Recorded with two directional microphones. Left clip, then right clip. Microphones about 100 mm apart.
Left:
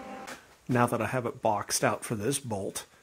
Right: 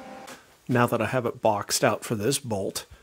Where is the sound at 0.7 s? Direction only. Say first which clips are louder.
Right 4 dB; 65° right (ahead or behind).